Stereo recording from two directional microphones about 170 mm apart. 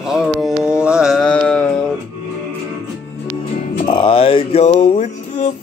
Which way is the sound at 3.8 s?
30° left (ahead or behind).